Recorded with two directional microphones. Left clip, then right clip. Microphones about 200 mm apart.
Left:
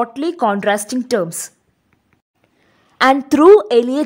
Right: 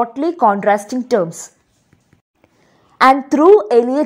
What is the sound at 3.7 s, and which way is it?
Speech, 35° left (ahead or behind).